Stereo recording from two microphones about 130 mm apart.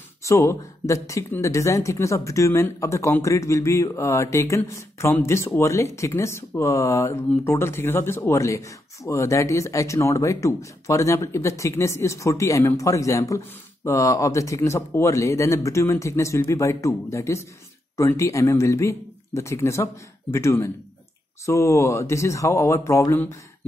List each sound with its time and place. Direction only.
0.2 s speech: 20° left (ahead or behind)